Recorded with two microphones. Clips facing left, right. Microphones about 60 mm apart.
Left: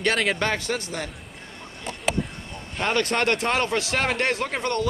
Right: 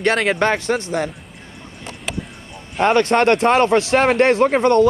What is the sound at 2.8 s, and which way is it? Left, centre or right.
Speech, right.